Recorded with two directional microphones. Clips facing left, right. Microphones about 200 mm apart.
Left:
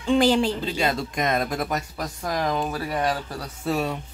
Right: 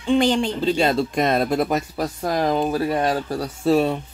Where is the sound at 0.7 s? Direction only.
30° right (ahead or behind).